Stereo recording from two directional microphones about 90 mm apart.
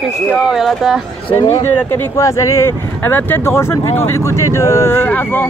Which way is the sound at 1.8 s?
25° left (ahead or behind).